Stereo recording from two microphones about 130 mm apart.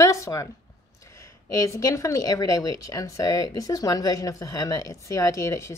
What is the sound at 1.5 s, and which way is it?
Speech, 25° left (ahead or behind).